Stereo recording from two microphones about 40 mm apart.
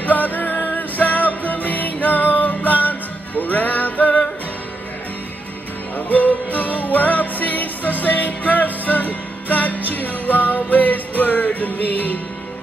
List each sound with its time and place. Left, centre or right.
0.0 s music: left
5.9 s music: left